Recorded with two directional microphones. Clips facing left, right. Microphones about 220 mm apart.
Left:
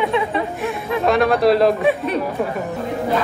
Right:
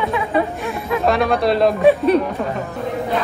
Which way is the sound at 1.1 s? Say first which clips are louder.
Left 3 dB; centre (ahead or behind).